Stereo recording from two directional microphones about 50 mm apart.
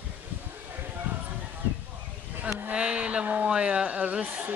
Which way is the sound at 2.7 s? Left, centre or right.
Right.